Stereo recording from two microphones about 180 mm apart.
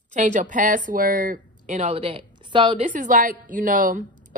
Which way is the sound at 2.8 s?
45° right (ahead or behind).